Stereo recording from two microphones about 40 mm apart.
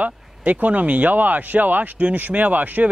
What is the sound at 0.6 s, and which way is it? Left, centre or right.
A man's voice, right.